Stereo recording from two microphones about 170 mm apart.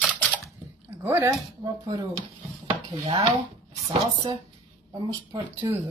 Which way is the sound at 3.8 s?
20° right (ahead or behind).